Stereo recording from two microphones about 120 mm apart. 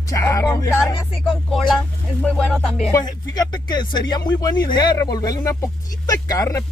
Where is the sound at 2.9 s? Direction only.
30° left (ahead or behind).